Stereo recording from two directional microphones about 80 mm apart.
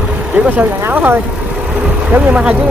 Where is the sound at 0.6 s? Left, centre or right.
Right.